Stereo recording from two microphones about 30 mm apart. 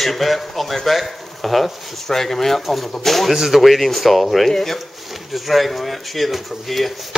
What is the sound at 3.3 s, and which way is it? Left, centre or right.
Speech, centre.